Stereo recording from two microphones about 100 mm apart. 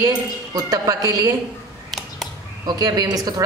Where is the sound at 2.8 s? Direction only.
40° right (ahead or behind).